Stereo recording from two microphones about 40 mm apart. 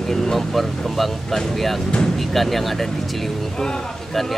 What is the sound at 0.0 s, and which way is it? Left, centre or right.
Speech, centre.